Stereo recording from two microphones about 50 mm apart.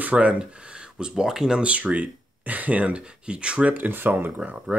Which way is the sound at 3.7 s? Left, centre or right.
Right.